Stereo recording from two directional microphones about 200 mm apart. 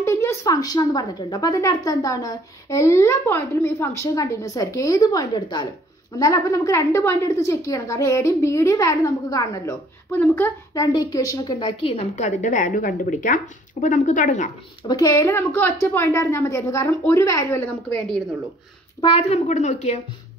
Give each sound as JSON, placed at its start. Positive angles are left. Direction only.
{"t": 0.0, "sound": "a woman's voice", "side_deg": 15}
{"t": 14.9, "sound": "a woman's voice", "side_deg": 15}
{"t": 18.9, "sound": "a woman's voice", "side_deg": 30}